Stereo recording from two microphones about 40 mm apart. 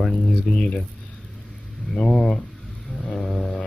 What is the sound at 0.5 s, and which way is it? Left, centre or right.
Speech, left.